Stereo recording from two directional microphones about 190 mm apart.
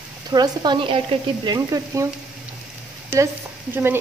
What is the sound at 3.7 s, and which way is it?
Speech, 10° right (ahead or behind).